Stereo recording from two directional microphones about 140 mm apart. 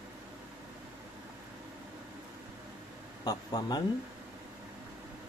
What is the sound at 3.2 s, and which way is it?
Speech, 30° left (ahead or behind).